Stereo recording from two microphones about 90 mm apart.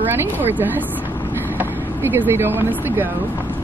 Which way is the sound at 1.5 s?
20° right (ahead or behind).